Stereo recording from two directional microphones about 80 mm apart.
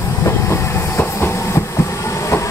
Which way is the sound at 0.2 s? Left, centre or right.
Left.